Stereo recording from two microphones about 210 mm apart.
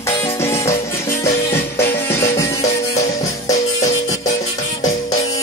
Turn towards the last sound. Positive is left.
turn(degrees=15)  # may be behind; listen again after turning